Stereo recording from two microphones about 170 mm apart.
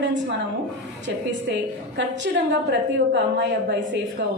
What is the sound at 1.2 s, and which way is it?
A woman's voice, 90° right.